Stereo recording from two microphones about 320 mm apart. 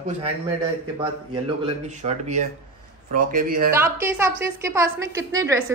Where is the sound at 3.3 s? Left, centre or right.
Right.